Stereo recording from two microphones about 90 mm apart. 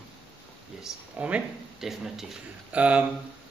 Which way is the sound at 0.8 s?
15° right (ahead or behind).